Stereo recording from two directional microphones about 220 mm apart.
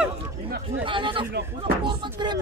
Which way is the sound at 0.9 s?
25° right (ahead or behind).